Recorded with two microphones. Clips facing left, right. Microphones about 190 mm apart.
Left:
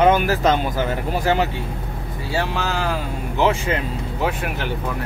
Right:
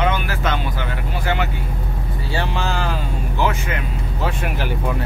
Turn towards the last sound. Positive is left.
turn(degrees=30)  # may be behind; listen again after turning